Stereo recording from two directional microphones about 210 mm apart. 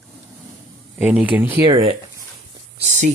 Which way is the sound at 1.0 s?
5° right (ahead or behind).